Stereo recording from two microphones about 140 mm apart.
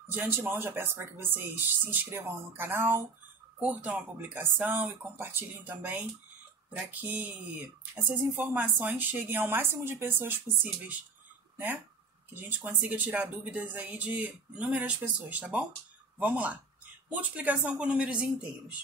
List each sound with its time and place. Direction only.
0.0 s speech: 15° right (ahead or behind)